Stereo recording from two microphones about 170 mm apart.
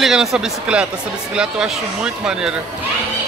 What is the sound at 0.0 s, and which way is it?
Speech, centre (ahead or behind).